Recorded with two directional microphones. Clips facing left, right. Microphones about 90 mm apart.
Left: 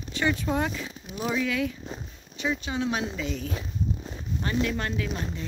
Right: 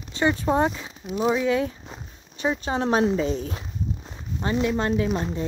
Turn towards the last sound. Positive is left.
turn(degrees=-30)  # may be behind; listen again after turning